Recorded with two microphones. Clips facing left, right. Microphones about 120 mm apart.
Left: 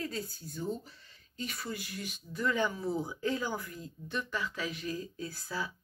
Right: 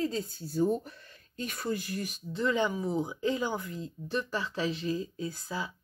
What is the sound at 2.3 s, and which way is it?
Speech, 20° right (ahead or behind).